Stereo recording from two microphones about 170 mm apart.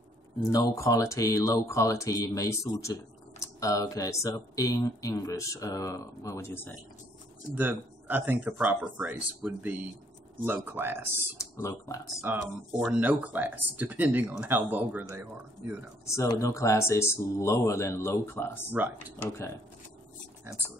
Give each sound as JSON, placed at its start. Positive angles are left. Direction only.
{"t": 0.5, "sound": "speech", "side_deg": 20}
{"t": 7.5, "sound": "speech", "side_deg": -10}
{"t": 11.3, "sound": "speech", "side_deg": 15}
{"t": 12.2, "sound": "speech", "side_deg": -10}
{"t": 16.3, "sound": "speech", "side_deg": 20}
{"t": 18.7, "sound": "speech", "side_deg": -10}
{"t": 19.2, "sound": "speech", "side_deg": 15}